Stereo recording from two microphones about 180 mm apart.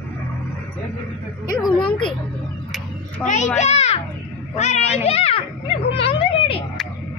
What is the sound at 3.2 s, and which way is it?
A child's voice, 40° left (ahead or behind).